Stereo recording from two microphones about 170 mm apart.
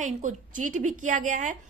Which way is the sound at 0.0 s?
45° right (ahead or behind).